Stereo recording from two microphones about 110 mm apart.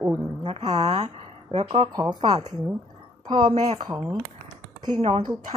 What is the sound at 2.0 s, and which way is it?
Speech, 40° right (ahead or behind).